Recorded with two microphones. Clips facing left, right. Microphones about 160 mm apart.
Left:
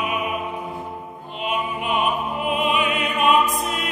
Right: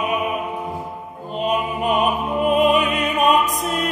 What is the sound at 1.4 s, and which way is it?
Music, 40° right (ahead or behind).